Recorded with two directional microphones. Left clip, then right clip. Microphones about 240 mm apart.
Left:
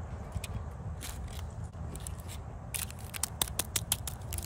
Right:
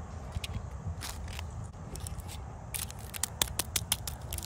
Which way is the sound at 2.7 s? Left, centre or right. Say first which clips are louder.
Even; centre.